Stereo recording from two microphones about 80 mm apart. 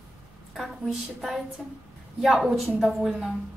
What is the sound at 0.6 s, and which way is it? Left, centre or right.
A woman's voice, centre.